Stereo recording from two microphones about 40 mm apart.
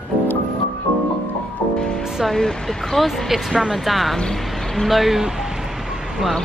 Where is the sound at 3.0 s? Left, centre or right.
Centre.